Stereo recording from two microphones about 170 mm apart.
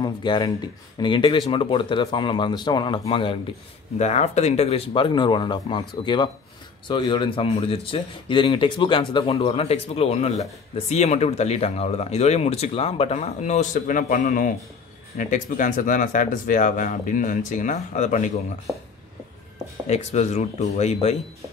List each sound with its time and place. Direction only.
0.0 s speech: 25° left (ahead or behind); by 18.3 s 45° left (ahead or behind)
19.9 s speech: 40° left (ahead or behind)